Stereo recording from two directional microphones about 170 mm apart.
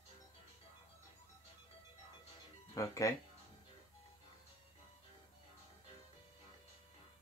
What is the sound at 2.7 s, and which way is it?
Speech, 20° left (ahead or behind).